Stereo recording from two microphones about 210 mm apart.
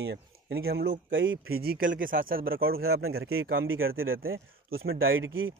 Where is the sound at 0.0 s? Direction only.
55° right (ahead or behind).